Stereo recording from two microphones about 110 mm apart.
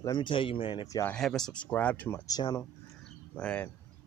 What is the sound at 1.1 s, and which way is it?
Speech, 5° left (ahead or behind).